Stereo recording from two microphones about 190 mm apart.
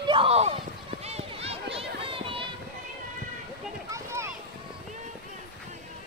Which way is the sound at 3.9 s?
15° right (ahead or behind).